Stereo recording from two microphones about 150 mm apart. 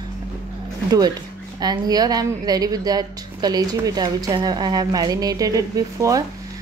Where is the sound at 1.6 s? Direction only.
25° right (ahead or behind).